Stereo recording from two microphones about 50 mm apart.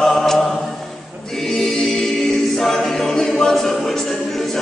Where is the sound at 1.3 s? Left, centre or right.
Centre.